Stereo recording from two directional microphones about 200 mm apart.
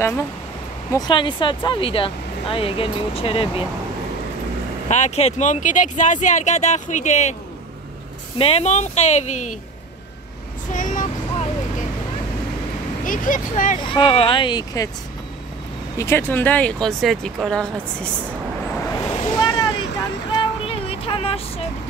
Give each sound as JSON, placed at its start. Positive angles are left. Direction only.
{"t": 0.9, "sound": "speech", "side_deg": 20}
{"t": 4.8, "sound": "speech", "side_deg": 35}
{"t": 8.4, "sound": "speech", "side_deg": 30}
{"t": 10.7, "sound": "vehicle", "side_deg": 40}
{"t": 13.0, "sound": "speech", "side_deg": 40}
{"t": 13.7, "sound": "speech", "side_deg": 25}
{"t": 16.0, "sound": "speech", "side_deg": 10}
{"t": 18.9, "sound": "a sound", "side_deg": 20}
{"t": 20.3, "sound": "child singing", "side_deg": 30}